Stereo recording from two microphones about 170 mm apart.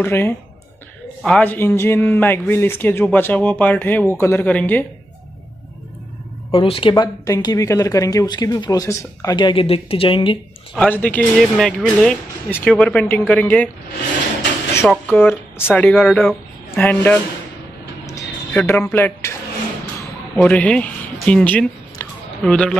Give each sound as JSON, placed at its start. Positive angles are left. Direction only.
{"t": 0.0, "sound": "a man's voice", "side_deg": 10}
{"t": 6.5, "sound": "speech", "side_deg": 30}
{"t": 10.7, "sound": "a man's voice", "side_deg": 10}
{"t": 14.9, "sound": "a man's voice", "side_deg": 10}
{"t": 18.0, "sound": "a sound", "side_deg": 20}
{"t": 18.6, "sound": "a man's voice", "side_deg": 5}
{"t": 20.3, "sound": "speech", "side_deg": 5}
{"t": 22.0, "sound": "a sound", "side_deg": 15}
{"t": 22.4, "sound": "speech", "side_deg": 5}